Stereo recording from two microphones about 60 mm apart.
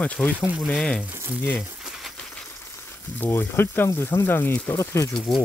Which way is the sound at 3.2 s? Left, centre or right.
Left.